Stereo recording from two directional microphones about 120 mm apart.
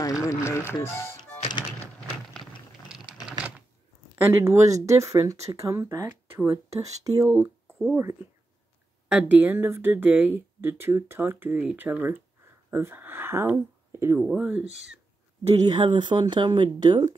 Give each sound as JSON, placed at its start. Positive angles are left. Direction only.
{"t": 0.0, "sound": "music", "side_deg": 30}
{"t": 3.3, "sound": "typewriter", "side_deg": -10}
{"t": 4.1, "sound": "speech", "side_deg": -20}
{"t": 7.2, "sound": "speech", "side_deg": -15}
{"t": 14.2, "sound": "speech", "side_deg": -10}
{"t": 15.5, "sound": "speech", "side_deg": -35}